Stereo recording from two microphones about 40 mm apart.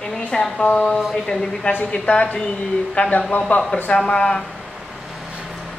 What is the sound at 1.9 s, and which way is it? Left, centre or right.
A woman's voice, left.